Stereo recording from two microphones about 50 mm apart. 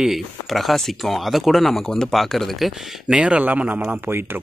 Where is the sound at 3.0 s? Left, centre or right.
Right.